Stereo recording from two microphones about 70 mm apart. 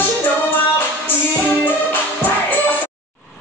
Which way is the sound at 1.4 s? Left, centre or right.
Left.